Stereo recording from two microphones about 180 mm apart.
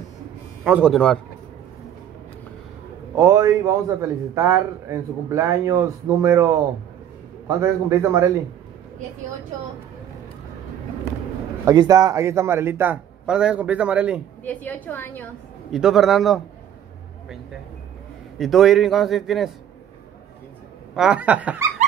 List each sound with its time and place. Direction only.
0.7 s a man's voice: 5° right (ahead or behind)
3.2 s a man's voice: 20° right (ahead or behind)
11.6 s a man's voice: 20° right (ahead or behind)
14.4 s a woman's voice: 10° left (ahead or behind)
15.7 s a man's voice: centre (ahead or behind)
18.4 s a man's voice: centre (ahead or behind)
20.9 s a man's voice: 5° right (ahead or behind)